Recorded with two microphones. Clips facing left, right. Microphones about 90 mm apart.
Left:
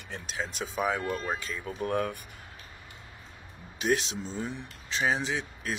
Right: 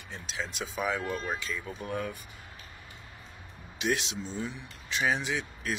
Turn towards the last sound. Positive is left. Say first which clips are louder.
# left 1 dB
turn(degrees=35)  # may be behind; listen again after turning